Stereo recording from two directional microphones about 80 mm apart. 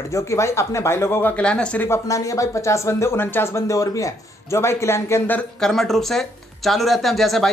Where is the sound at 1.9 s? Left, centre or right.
Left.